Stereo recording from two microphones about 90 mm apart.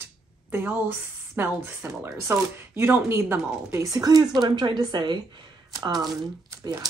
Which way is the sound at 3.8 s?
40° right (ahead or behind).